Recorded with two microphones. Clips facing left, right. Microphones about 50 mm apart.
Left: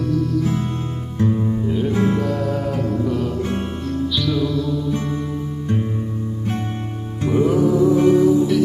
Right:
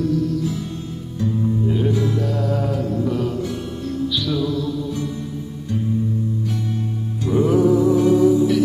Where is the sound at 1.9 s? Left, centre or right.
Left.